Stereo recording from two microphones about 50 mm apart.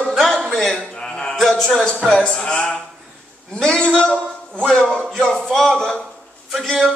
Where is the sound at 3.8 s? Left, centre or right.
Left.